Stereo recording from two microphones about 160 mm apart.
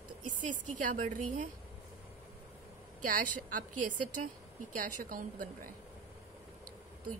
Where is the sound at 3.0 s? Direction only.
60° right (ahead or behind).